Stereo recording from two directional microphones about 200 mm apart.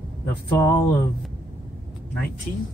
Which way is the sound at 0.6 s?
15° left (ahead or behind).